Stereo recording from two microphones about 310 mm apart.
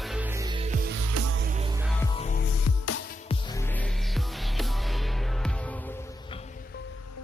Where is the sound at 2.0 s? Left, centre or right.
Left.